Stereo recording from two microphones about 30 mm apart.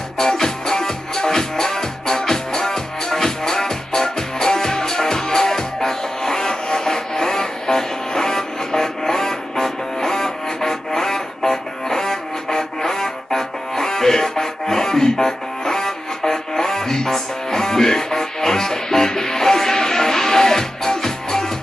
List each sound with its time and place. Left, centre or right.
0.2 s music: centre